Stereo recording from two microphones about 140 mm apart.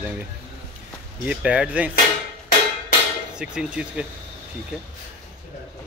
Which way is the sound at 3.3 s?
5° right (ahead or behind).